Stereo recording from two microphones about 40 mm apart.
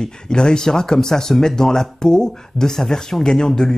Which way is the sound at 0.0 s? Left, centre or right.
Centre.